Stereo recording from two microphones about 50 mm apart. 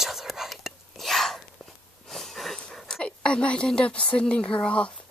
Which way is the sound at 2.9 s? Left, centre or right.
Centre.